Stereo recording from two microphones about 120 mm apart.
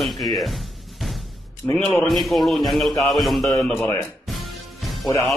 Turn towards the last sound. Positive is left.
turn(degrees=30)  # may be behind; listen again after turning